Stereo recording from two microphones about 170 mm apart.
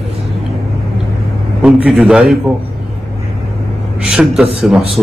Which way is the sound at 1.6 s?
5° right (ahead or behind).